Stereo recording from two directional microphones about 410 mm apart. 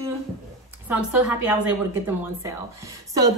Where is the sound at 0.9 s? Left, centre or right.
Centre.